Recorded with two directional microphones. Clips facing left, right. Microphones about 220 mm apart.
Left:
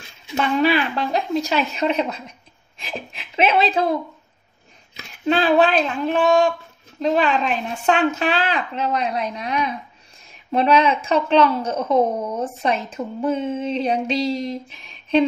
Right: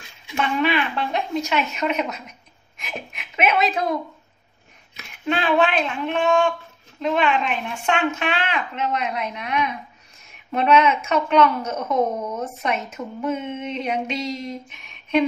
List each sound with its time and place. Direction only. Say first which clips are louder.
0.3 s a woman's voice: left 3 dB; 35° left (ahead or behind)